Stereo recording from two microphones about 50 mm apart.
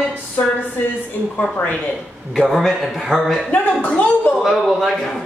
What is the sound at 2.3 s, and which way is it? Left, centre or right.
A man's voice, centre.